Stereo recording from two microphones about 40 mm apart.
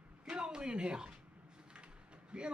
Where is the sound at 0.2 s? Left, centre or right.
Right.